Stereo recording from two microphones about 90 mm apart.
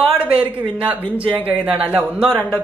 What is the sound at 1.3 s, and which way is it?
Speech, 20° right (ahead or behind).